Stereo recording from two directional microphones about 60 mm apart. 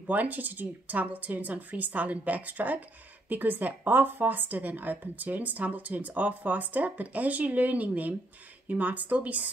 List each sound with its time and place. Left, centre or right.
0.0 s speech: right